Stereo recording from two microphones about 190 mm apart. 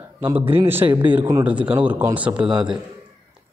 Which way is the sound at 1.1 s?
15° right (ahead or behind).